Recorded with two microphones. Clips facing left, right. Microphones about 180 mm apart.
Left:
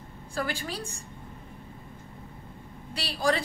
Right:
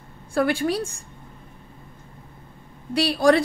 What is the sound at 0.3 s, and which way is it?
Speech, 65° right (ahead or behind).